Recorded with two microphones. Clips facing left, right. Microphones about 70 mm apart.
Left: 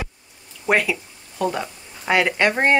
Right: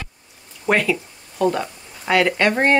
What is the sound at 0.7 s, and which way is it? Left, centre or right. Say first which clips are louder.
Speech: right 1 dB; centre.